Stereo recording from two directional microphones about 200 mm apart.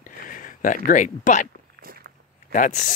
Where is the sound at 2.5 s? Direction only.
40° left (ahead or behind).